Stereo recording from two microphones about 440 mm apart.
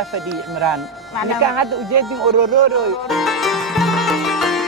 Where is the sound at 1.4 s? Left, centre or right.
Right.